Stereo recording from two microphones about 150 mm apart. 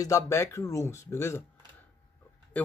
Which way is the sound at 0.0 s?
20° left (ahead or behind).